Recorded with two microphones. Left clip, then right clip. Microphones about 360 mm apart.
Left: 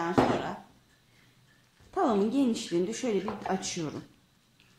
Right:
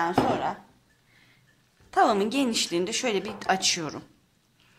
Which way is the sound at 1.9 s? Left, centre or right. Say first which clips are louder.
Right 5 dB; right.